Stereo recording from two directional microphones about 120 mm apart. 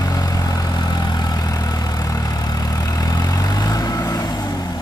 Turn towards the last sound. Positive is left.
turn(degrees=30)  # may be behind; listen again after turning